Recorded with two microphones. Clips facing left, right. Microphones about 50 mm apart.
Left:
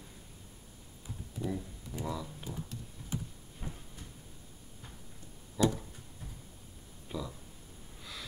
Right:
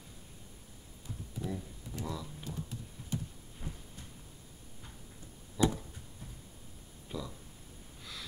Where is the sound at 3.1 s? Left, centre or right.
Centre.